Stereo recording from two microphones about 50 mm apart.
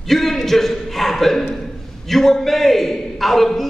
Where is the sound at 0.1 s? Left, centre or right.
Centre.